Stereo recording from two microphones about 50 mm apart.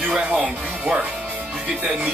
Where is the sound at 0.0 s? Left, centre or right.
Right.